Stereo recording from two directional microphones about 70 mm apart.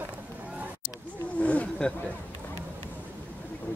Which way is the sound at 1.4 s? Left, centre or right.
Centre.